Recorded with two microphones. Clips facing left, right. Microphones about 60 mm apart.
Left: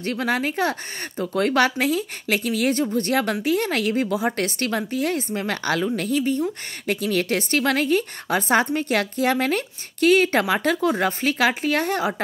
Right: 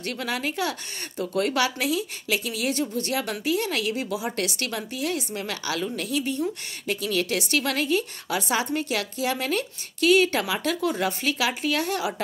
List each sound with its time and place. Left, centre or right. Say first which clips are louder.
0.0 s speech: left 5 dB; left